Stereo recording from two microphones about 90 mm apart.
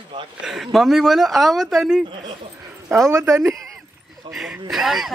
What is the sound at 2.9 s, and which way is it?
Speech, 30° right (ahead or behind).